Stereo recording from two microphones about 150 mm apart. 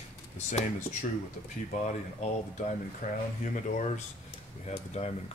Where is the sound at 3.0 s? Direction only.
65° left (ahead or behind).